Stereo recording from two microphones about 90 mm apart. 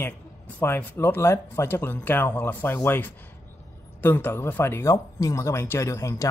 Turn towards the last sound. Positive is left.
turn(degrees=30)  # may be behind; listen again after turning